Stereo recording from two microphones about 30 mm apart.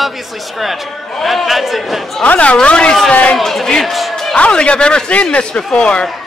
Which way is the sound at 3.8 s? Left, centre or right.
Centre.